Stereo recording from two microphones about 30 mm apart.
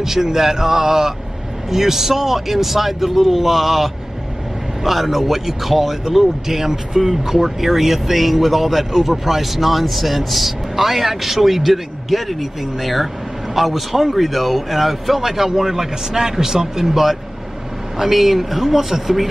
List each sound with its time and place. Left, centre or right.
0.0 s a man's voice: centre